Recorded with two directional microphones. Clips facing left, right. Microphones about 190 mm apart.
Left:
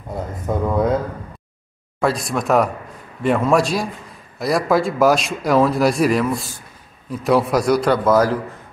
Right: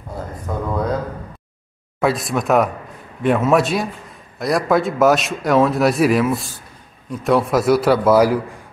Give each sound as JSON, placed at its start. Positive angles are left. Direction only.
{"t": 0.5, "sound": "speech", "side_deg": 20}
{"t": 2.0, "sound": "a man's voice", "side_deg": 0}